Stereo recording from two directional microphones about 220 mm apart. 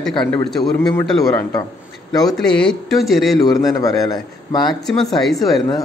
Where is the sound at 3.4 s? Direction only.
15° left (ahead or behind).